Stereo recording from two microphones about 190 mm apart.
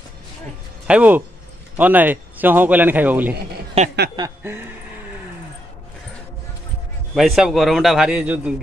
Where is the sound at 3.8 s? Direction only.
30° right (ahead or behind).